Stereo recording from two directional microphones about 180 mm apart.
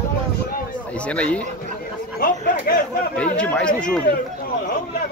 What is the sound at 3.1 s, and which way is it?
Speech, 5° left (ahead or behind).